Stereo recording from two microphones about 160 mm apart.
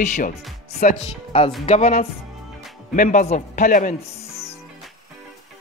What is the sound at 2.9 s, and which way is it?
Speech, 55° left (ahead or behind).